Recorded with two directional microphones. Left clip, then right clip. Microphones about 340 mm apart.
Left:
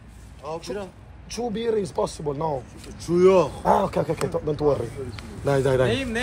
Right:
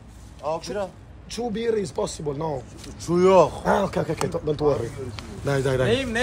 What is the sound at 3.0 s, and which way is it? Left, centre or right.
Speech, centre.